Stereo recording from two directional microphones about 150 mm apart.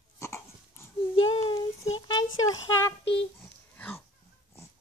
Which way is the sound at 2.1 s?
25° left (ahead or behind).